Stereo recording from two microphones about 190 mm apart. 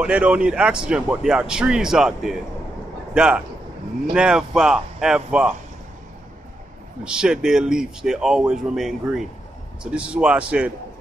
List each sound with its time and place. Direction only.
0.0 s speech: 5° right (ahead or behind)
7.1 s speech: 5° right (ahead or behind)